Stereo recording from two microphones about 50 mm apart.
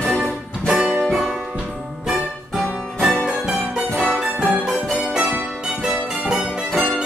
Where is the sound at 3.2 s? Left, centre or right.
Centre.